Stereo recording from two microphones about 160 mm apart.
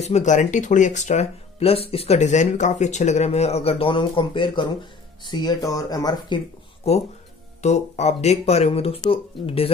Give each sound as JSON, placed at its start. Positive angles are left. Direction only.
{"t": 0.0, "sound": "speech", "side_deg": 45}
{"t": 7.6, "sound": "speech", "side_deg": 45}